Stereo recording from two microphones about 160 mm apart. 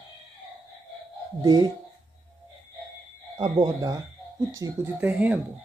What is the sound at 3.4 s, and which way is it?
Speech, 25° right (ahead or behind).